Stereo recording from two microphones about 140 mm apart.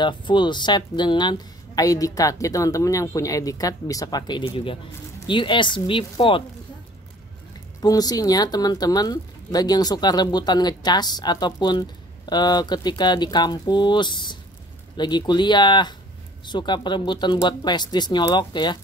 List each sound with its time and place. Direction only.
0.0 s a woman's voice: 35° left (ahead or behind)
7.8 s a woman's voice: 25° left (ahead or behind)